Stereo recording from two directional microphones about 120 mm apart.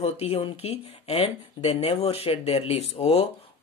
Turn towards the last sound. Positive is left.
turn(degrees=60)  # may be behind; listen again after turning